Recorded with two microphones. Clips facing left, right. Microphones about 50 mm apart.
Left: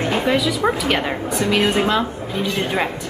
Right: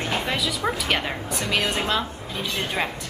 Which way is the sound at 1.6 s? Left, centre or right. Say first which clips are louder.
Left 7 dB; centre.